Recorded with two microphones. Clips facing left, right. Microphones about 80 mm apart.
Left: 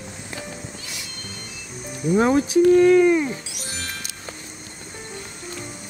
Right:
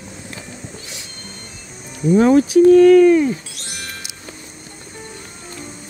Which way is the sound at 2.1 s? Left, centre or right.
Left.